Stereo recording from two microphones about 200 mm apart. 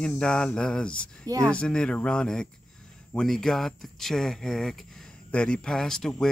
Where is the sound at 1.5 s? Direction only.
5° left (ahead or behind).